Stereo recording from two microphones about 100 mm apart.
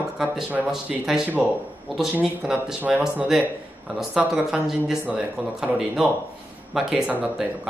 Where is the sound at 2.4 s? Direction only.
10° right (ahead or behind).